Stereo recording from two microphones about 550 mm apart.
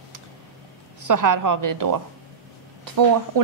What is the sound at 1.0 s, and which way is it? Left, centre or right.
Speech, right.